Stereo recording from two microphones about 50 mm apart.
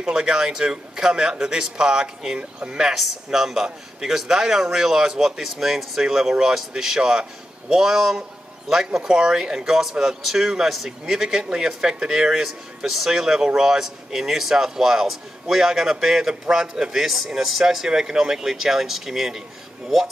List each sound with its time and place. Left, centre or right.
0.0 s speech: centre
2.9 s speech: centre